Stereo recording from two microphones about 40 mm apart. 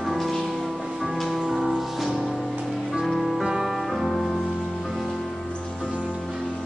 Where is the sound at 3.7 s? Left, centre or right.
Centre.